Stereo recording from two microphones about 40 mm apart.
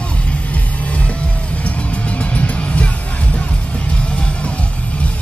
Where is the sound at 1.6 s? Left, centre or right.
Left.